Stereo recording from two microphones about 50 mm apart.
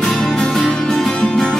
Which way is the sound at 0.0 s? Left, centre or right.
Centre.